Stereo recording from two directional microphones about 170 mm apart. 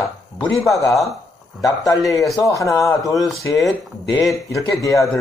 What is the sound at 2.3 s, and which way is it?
Speech, 20° left (ahead or behind).